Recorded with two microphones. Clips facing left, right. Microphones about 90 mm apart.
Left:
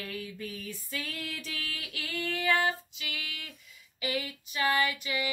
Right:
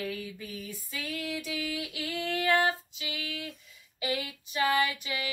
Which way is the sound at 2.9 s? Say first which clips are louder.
Right 3 dB; 25° right (ahead or behind).